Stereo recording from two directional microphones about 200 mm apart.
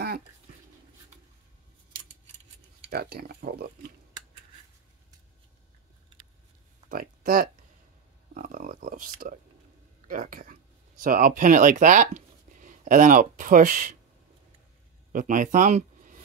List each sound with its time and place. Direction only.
2.9 s speech: 50° right (ahead or behind)
6.9 s speech: 45° right (ahead or behind)
15.1 s speech: 40° right (ahead or behind)